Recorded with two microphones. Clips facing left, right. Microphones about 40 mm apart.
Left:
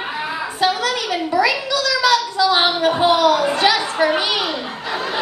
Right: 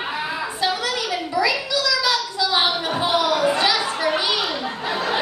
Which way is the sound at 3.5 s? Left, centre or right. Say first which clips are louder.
Left 3 dB; left.